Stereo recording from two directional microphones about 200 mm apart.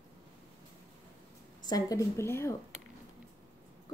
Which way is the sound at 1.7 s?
15° left (ahead or behind).